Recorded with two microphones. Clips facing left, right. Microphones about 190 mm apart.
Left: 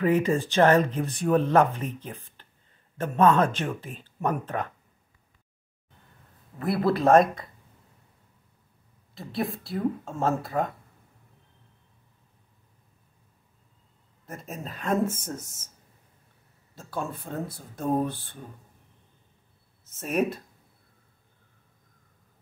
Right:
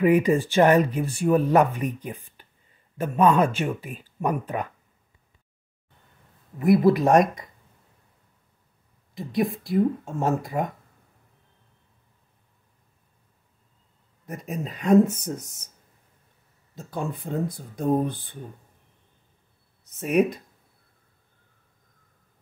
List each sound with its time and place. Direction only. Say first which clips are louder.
0.0 s speech: right 4 dB; 15° right (ahead or behind)
6.6 s speech: right 5 dB; 20° right (ahead or behind)
9.1 s speech: right 5 dB; 15° right (ahead or behind)
14.2 s speech: right 5 dB; 15° right (ahead or behind)
16.7 s speech: right 2 dB; 15° right (ahead or behind)
19.8 s speech: right 5 dB; 15° right (ahead or behind)